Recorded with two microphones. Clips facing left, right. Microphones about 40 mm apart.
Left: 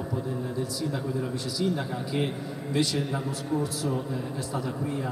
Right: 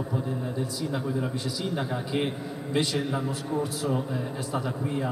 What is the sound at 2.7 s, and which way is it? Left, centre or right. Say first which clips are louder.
Speech: even; right.